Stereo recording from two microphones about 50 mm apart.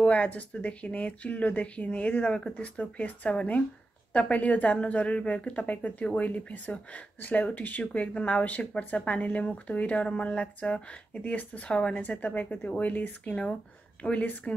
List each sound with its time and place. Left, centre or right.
0.2 s speech: left